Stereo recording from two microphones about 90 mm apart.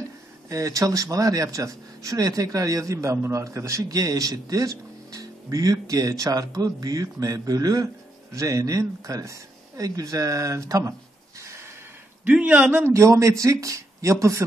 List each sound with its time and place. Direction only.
0.5 s speech: 40° right (ahead or behind)
12.3 s a man's voice: 15° right (ahead or behind)
12.8 s speech: 35° right (ahead or behind)